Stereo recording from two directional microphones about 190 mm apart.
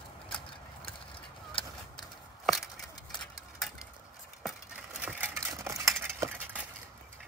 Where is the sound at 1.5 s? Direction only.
25° left (ahead or behind).